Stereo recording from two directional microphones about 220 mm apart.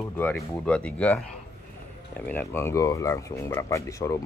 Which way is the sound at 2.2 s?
10° left (ahead or behind).